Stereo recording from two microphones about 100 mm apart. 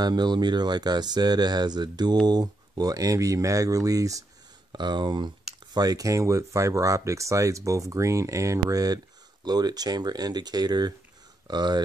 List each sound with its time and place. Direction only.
0.0 s speech: 45° right (ahead or behind)
4.7 s speech: 50° right (ahead or behind)